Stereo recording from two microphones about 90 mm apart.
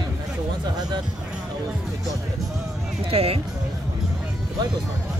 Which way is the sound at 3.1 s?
90° right.